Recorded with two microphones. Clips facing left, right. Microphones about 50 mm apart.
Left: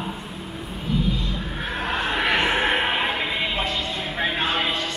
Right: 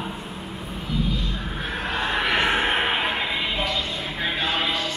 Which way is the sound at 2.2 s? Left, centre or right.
Left.